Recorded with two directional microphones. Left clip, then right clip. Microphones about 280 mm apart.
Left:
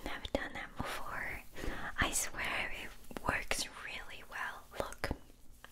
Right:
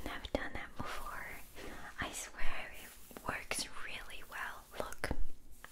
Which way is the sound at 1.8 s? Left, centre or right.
Left.